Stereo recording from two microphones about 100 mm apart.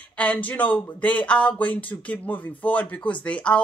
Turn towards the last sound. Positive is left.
turn(degrees=10)  # may be behind; listen again after turning